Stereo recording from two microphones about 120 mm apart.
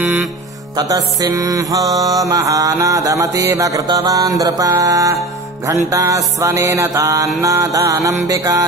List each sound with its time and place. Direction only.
0.0 s music: 10° right (ahead or behind)
0.7 s mantra: 30° right (ahead or behind)